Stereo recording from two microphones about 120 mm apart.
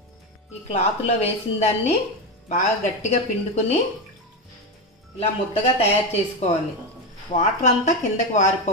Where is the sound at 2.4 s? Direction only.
75° left (ahead or behind).